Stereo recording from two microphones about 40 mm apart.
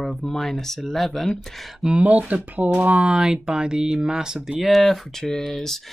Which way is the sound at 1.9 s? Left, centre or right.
Right.